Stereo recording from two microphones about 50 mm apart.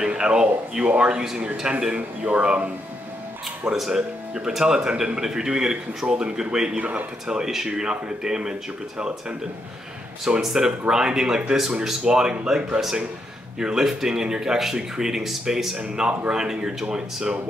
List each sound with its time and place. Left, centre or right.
0.0 s speech: centre
4.5 s speech: centre
6.8 s speech: right
7.2 s speech: centre
10.4 s speech: centre